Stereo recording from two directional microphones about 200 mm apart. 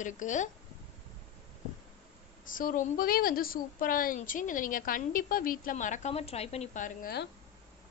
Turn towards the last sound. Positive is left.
turn(degrees=40)  # may be behind; listen again after turning